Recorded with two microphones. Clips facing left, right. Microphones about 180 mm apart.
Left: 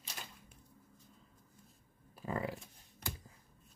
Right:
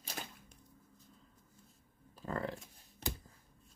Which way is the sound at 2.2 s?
10° left (ahead or behind).